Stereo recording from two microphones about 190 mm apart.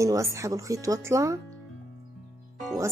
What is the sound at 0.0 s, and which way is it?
Speech, 15° right (ahead or behind).